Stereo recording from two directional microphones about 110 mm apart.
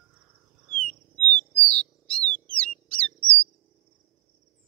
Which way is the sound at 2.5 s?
10° left (ahead or behind).